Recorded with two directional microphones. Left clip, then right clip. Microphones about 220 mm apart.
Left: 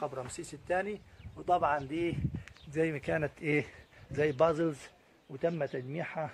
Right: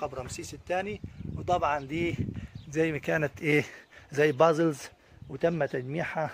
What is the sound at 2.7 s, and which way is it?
A man's voice, 40° right (ahead or behind).